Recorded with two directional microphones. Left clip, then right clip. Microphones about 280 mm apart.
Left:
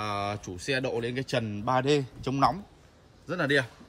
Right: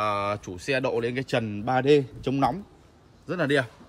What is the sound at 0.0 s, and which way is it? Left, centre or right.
A man's voice, centre.